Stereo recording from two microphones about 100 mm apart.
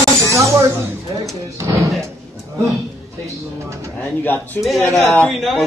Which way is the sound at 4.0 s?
20° left (ahead or behind).